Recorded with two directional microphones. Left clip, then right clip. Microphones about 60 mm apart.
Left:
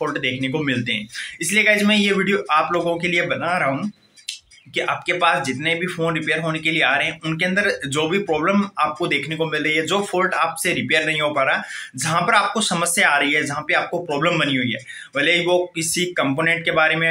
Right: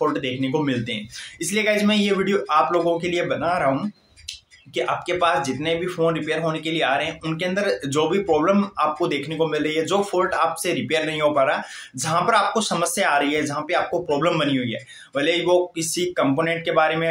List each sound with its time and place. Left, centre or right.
0.1 s speech: right